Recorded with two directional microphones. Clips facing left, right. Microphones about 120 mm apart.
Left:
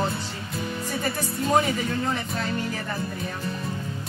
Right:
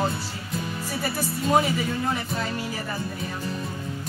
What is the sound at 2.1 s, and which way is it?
Speech, 5° right (ahead or behind).